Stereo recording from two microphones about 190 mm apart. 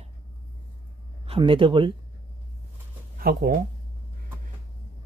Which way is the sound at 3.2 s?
50° right (ahead or behind).